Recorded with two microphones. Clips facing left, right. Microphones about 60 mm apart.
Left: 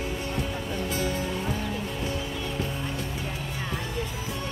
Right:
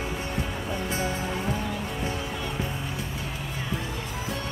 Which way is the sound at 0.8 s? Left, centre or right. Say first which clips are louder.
Even; right.